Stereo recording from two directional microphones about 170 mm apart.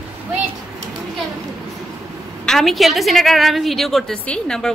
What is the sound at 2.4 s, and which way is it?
A woman's voice, 5° left (ahead or behind).